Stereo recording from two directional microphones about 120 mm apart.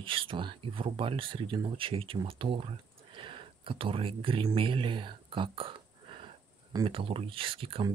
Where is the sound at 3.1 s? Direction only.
45° right (ahead or behind).